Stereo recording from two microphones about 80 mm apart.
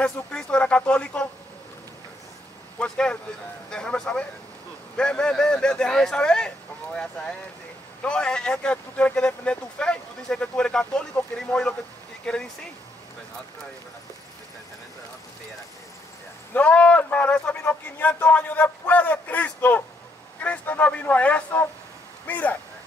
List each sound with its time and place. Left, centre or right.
0.0 s speech: centre
2.8 s speech: centre
16.5 s a man's voice: centre